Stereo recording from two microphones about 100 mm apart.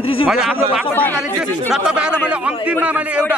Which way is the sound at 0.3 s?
5° right (ahead or behind).